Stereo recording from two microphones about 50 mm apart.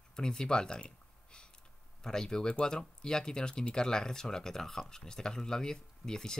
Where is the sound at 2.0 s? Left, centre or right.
Centre.